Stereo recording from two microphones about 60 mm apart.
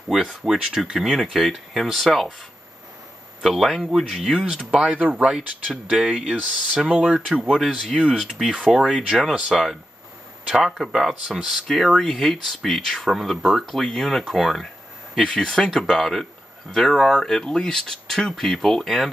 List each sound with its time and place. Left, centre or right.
0.1 s speech: centre
3.4 s speech: centre
15.2 s speech: centre
15.8 s speech: centre